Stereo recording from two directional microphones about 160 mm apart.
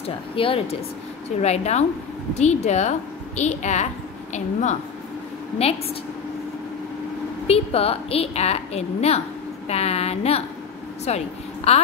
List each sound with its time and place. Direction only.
0.0 s a woman's voice: 35° left (ahead or behind)
7.4 s a woman's voice: 40° left (ahead or behind)